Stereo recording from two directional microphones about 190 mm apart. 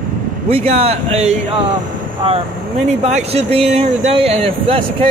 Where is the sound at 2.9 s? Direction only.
35° right (ahead or behind).